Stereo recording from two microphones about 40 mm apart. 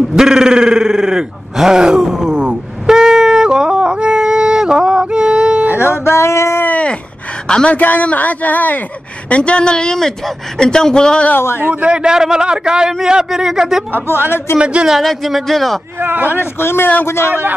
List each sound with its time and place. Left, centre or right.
0.1 s groan: centre
5.8 s a sound: left
6.7 s a sound: left
7.4 s a woman's voice: left
7.7 s speech: left
9.3 s a woman's voice: left
11.3 s a man's voice: left
11.9 s a man's voice: centre
14.6 s a man's voice: right
14.9 s speech: centre
16.0 s speech: right
16.3 s a man's voice: left
17.0 s a man's voice: left
17.3 s speech: right